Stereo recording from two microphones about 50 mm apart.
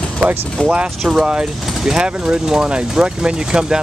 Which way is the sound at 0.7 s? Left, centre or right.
Right.